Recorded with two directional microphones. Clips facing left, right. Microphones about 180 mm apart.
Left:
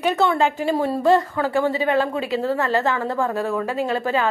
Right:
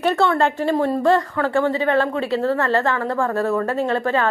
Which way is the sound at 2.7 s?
20° left (ahead or behind).